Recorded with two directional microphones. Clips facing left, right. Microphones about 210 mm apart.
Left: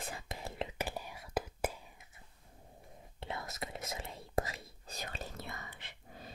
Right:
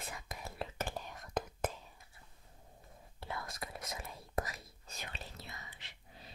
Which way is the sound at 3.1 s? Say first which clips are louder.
Left 1 dB; 25° left (ahead or behind).